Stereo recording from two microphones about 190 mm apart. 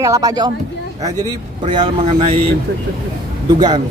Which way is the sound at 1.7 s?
25° right (ahead or behind).